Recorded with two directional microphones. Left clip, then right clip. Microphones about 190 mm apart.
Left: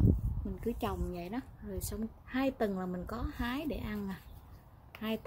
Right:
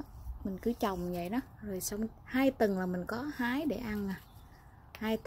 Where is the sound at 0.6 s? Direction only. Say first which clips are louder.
Right 3 dB; 30° right (ahead or behind).